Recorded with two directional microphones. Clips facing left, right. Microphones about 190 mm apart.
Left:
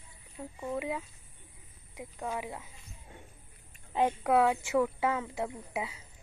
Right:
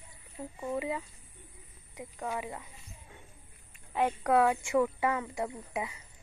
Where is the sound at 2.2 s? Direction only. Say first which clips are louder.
Even; 10° left (ahead or behind).